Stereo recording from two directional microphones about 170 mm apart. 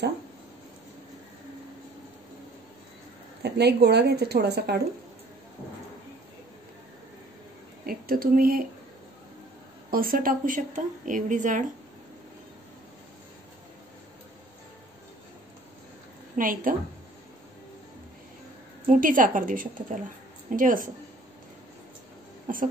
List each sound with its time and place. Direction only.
3.4 s a woman's voice: 75° right (ahead or behind)
7.8 s speech: 60° right (ahead or behind)
9.8 s a woman's voice: 60° right (ahead or behind)
16.3 s a woman's voice: 55° right (ahead or behind)
18.9 s a woman's voice: 50° right (ahead or behind)
22.5 s a woman's voice: 50° right (ahead or behind)